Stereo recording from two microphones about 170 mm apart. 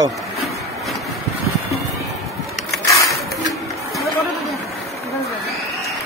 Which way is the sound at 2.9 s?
20° left (ahead or behind).